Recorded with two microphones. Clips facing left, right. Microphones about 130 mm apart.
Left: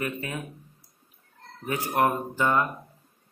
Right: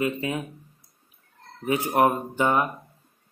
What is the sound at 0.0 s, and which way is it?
Speech, 20° right (ahead or behind).